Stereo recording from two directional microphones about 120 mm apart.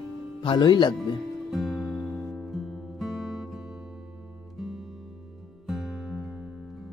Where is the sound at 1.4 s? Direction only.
Centre (ahead or behind).